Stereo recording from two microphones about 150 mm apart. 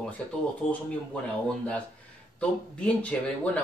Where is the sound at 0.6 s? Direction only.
50° left (ahead or behind).